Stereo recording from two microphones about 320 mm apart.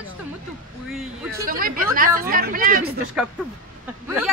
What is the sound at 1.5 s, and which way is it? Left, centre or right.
Speech, right.